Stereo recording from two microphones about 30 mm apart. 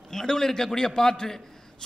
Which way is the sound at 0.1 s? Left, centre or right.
Centre.